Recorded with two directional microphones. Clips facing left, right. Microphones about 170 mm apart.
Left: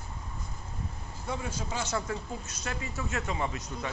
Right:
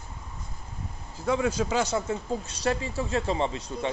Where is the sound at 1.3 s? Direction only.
90° right.